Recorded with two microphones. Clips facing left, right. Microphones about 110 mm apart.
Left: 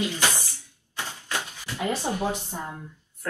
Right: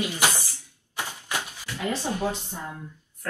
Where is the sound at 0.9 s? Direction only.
15° right (ahead or behind).